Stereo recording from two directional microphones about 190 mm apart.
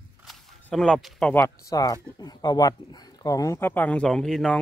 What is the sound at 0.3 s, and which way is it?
Speech, 5° left (ahead or behind).